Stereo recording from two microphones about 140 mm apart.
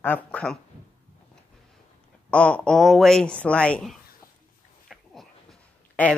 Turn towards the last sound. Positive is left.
turn(degrees=5)  # may be behind; listen again after turning